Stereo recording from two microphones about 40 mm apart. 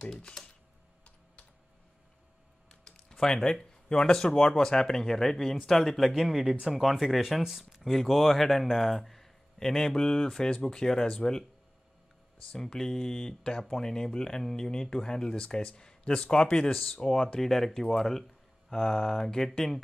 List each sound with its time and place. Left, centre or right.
2.7 s typing: centre
3.9 s speech: centre
6.1 s speech: centre
7.9 s speech: centre
12.5 s speech: centre